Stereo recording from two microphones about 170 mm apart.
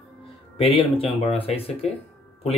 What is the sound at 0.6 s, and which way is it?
Speech, 35° left (ahead or behind).